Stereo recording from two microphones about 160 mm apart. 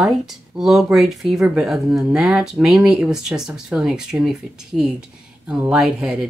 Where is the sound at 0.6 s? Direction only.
Centre (ahead or behind).